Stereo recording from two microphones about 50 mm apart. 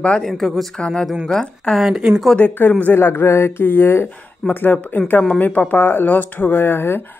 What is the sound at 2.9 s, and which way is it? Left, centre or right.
Speech, left.